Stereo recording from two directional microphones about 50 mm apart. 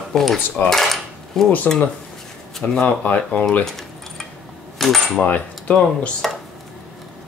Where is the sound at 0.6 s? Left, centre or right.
Centre.